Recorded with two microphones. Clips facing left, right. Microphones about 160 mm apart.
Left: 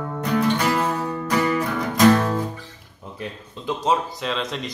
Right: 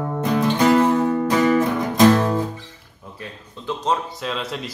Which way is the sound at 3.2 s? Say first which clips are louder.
Left 4 dB; 10° left (ahead or behind).